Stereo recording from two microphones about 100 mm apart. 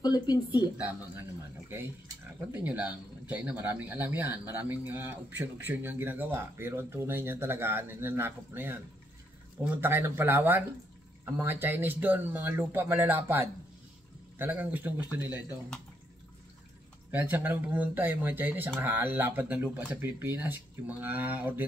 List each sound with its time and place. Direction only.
0.0 s speech: 45° left (ahead or behind)
2.5 s speech: 15° right (ahead or behind)
9.8 s speech: 20° right (ahead or behind)
17.1 s speech: 20° right (ahead or behind)